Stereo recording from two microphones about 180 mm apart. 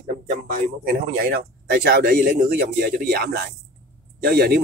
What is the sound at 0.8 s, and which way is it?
Speech, 55° right (ahead or behind).